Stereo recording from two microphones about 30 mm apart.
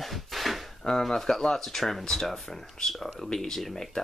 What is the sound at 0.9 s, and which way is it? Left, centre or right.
Speech, centre.